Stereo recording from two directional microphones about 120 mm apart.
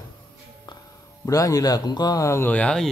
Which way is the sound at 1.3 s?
30° left (ahead or behind).